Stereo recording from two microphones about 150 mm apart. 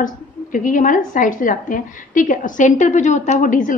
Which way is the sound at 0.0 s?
60° left (ahead or behind).